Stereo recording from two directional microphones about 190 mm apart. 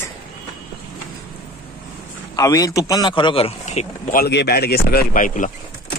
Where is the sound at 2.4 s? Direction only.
15° left (ahead or behind).